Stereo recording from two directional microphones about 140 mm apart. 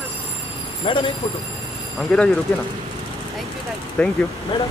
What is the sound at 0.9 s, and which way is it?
Speech, 40° left (ahead or behind).